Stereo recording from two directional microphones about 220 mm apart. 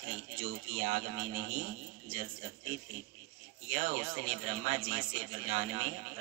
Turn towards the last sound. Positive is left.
turn(degrees=-30)  # may be behind; listen again after turning